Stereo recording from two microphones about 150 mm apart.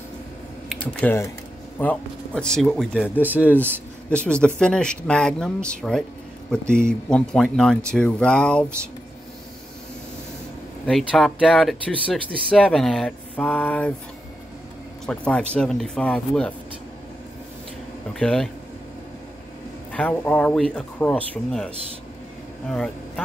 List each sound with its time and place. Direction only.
1.0 s speech: 10° left (ahead or behind)
10.9 s speech: centre (ahead or behind)
15.0 s speech: 5° left (ahead or behind)
18.2 s speech: 5° left (ahead or behind)
19.9 s speech: 10° left (ahead or behind)